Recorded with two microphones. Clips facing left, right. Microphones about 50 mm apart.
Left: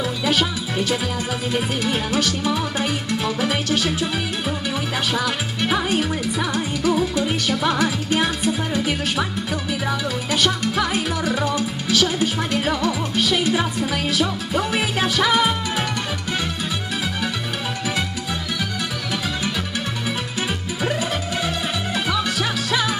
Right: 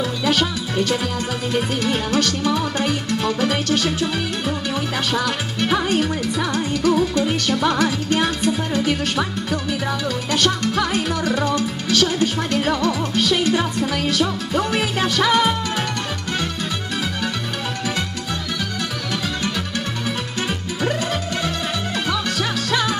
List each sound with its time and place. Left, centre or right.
0.2 s speech: centre
1.5 s music: centre
22.1 s music: centre